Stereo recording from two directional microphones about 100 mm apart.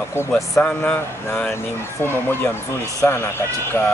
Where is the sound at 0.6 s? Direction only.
15° left (ahead or behind).